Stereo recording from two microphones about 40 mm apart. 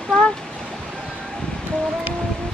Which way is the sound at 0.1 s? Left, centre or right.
Left.